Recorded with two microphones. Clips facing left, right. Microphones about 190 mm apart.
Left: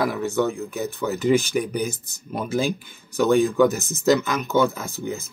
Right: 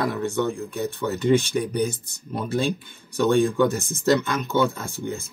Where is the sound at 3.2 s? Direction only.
30° right (ahead or behind).